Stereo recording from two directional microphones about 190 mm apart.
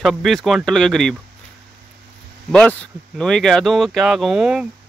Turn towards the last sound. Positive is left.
turn(degrees=-5)  # may be behind; listen again after turning